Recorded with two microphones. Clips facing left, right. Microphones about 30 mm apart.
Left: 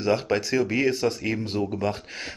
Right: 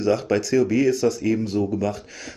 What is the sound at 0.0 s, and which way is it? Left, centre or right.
Speech, left.